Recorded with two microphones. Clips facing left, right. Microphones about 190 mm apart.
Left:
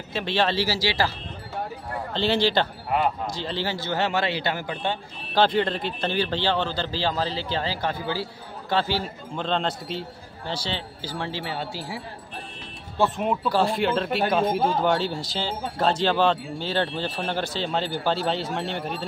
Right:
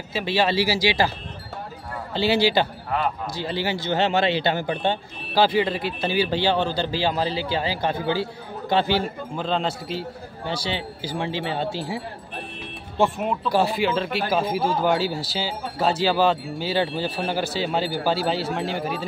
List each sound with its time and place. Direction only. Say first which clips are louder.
0.1 s a man's voice: right 2 dB; 5° right (ahead or behind)
2.1 s a man's voice: right 2 dB; 10° right (ahead or behind); by 4.9 s 25° right (ahead or behind)
5.3 s a man's voice: right 1 dB; 5° right (ahead or behind)
9.4 s a man's voice: right 1 dB; 5° right (ahead or behind); by 12.0 s 20° right (ahead or behind)
13.2 s speech: right 1 dB; centre (ahead or behind)